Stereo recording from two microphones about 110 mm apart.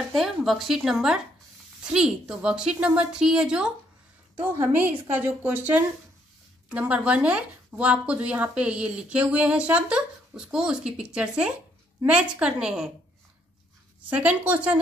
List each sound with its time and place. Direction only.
0.1 s a woman's voice: centre (ahead or behind)
14.0 s speech: 15° right (ahead or behind)